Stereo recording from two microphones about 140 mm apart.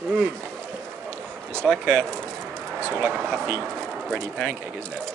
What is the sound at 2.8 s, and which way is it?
Speech, 15° right (ahead or behind).